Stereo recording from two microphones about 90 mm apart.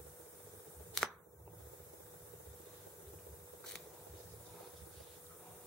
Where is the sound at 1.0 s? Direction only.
5° left (ahead or behind).